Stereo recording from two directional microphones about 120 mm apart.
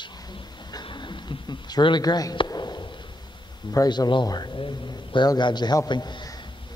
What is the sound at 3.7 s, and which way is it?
Speech, 30° left (ahead or behind).